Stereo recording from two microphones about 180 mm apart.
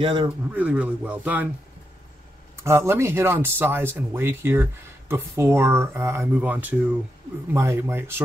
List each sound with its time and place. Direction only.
0.0 s a man's voice: 30° right (ahead or behind)
0.5 s speech: 10° right (ahead or behind)
2.5 s speech: 15° right (ahead or behind)